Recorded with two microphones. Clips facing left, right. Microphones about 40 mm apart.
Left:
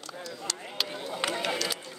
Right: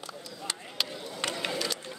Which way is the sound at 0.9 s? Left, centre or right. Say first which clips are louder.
Left 4 dB; left.